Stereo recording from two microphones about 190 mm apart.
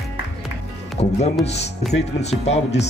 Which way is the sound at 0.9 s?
35° left (ahead or behind).